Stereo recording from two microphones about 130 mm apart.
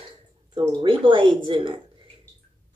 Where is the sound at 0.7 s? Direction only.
40° right (ahead or behind).